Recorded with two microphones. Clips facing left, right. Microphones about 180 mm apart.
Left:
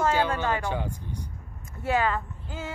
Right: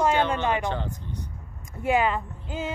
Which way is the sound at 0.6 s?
10° left (ahead or behind).